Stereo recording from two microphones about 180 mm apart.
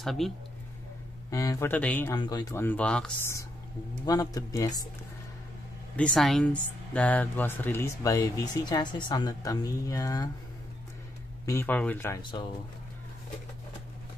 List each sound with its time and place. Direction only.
0.0 s speech: centre (ahead or behind)
1.3 s speech: 20° left (ahead or behind)
2.1 s speech: 20° left (ahead or behind)
2.6 s speech: 10° left (ahead or behind)
4.0 s speech: 20° left (ahead or behind)
5.9 s speech: 5° left (ahead or behind); by 10.3 s 20° left (ahead or behind)
11.4 s speech: 10° left (ahead or behind)
12.2 s speech: 25° left (ahead or behind)